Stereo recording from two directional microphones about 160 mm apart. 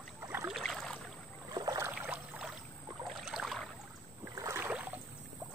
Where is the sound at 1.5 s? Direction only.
25° right (ahead or behind).